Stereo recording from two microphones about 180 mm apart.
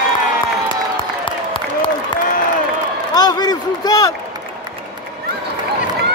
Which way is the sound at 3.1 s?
20° left (ahead or behind).